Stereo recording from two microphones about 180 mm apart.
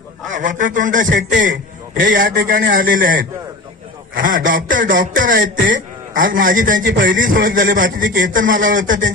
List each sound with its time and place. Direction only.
0.3 s a man's voice: 45° right (ahead or behind)